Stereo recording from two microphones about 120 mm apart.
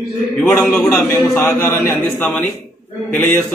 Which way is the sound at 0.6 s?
10° left (ahead or behind).